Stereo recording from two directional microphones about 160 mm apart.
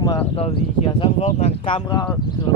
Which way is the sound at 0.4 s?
35° left (ahead or behind).